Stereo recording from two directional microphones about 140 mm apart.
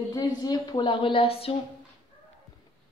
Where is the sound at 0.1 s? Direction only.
30° left (ahead or behind); by 1.5 s 45° left (ahead or behind).